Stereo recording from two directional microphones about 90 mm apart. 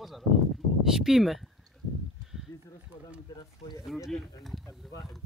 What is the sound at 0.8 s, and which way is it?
Speech, 5° right (ahead or behind).